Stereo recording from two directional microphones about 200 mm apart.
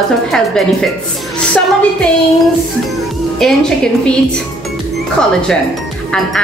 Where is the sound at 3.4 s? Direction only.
5° left (ahead or behind).